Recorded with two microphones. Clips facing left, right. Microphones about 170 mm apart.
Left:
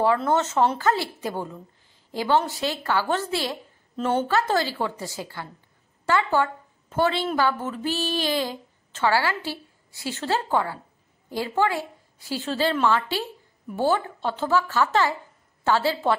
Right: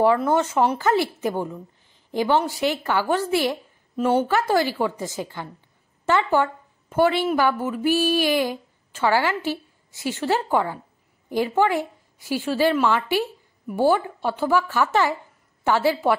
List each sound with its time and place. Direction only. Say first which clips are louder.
0.0 s a woman's voice: right 3 dB; 15° right (ahead or behind)